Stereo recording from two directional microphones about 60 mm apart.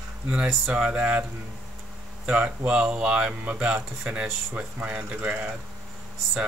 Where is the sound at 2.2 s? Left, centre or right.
Right.